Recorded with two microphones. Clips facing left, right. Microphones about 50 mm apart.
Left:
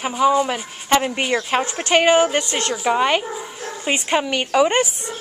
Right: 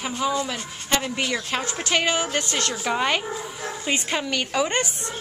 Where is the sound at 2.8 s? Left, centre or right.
Centre.